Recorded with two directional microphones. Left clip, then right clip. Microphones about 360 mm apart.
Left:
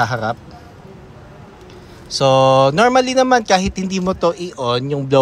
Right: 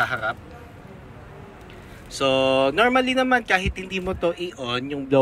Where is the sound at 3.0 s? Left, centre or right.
Centre.